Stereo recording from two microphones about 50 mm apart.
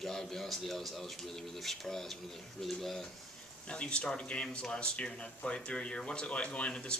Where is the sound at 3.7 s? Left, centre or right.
Left.